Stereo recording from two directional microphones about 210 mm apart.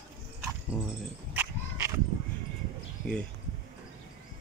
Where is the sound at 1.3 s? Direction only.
10° right (ahead or behind).